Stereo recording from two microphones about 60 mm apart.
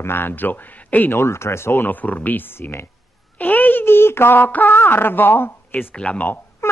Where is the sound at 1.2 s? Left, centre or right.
Left.